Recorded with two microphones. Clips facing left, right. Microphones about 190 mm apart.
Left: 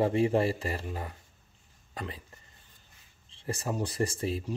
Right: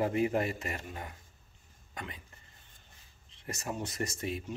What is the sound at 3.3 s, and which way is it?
Speech, 30° left (ahead or behind).